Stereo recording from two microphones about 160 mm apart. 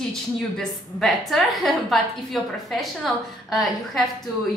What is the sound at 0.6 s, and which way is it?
A woman's voice, centre (ahead or behind).